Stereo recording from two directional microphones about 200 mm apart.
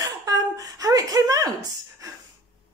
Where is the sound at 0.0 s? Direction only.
15° right (ahead or behind).